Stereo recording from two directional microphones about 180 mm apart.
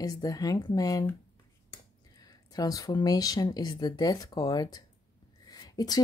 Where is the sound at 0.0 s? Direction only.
20° left (ahead or behind).